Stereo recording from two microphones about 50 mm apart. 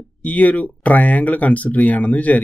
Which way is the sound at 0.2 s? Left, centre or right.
Left.